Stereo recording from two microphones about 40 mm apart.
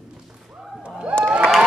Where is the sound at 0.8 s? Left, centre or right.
Right.